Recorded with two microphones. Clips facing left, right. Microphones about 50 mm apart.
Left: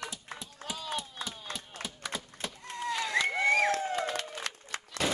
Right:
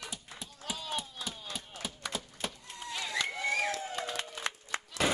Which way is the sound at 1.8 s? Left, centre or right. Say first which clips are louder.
Right 1 dB; centre.